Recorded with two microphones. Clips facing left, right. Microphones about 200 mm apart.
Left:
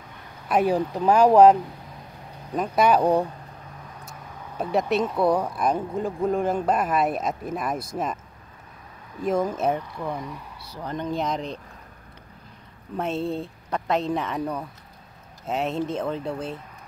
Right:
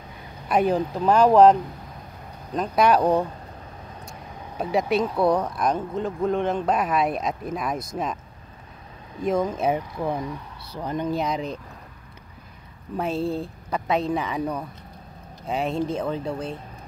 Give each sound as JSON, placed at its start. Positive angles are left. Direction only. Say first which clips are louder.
{"t": 0.5, "sound": "speech", "louder": "even", "side_deg": 5}
{"t": 4.6, "sound": "speech", "louder": "right 1 dB", "side_deg": 0}
{"t": 9.2, "sound": "speech", "louder": "even", "side_deg": 5}
{"t": 9.7, "sound": "speech", "louder": "right 2 dB", "side_deg": -15}
{"t": 12.9, "sound": "speech", "louder": "right 1 dB", "side_deg": 0}